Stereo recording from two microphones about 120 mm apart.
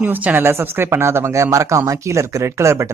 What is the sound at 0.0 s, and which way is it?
Speech, 15° right (ahead or behind).